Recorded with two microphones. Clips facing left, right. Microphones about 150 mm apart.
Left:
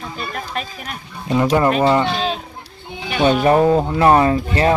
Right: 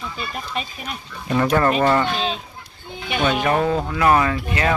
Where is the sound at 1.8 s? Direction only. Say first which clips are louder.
Left 3 dB; 15° left (ahead or behind).